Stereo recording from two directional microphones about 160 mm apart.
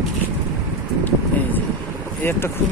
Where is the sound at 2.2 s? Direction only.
15° left (ahead or behind).